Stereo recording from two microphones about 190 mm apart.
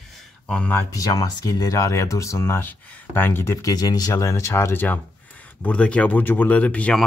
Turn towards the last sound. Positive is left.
turn(degrees=5)  # may be behind; listen again after turning